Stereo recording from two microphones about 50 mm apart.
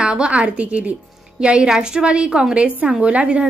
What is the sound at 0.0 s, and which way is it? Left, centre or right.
A woman's voice, centre.